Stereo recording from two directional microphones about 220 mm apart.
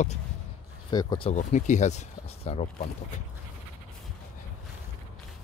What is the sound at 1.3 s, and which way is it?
Speech, 35° left (ahead or behind).